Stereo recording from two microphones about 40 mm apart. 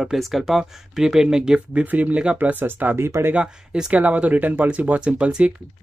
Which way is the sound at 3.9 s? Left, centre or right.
Right.